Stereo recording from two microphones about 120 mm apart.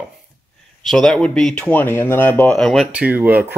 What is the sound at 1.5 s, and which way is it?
Speech, 15° left (ahead or behind).